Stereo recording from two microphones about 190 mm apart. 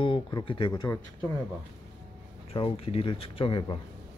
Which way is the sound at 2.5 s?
30° left (ahead or behind).